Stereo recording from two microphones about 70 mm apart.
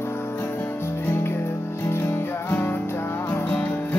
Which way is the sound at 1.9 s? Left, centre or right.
Left.